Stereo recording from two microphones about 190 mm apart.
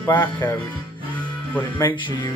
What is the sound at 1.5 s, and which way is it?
Speech, 15° left (ahead or behind).